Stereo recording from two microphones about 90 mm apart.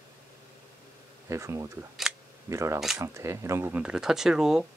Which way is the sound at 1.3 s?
35° right (ahead or behind).